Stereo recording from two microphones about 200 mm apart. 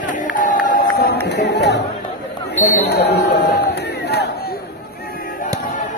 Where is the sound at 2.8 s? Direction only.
55° left (ahead or behind).